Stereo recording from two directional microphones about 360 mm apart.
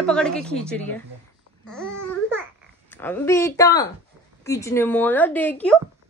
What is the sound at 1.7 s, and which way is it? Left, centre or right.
Babbling, centre.